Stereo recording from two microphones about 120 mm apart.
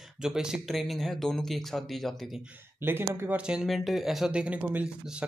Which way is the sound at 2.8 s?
20° right (ahead or behind).